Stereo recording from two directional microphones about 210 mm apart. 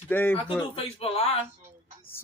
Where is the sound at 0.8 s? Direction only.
30° left (ahead or behind).